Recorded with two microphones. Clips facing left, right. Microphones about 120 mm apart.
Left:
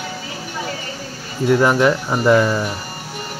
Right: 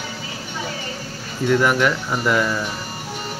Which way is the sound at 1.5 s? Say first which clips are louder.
Left 4 dB; 30° left (ahead or behind).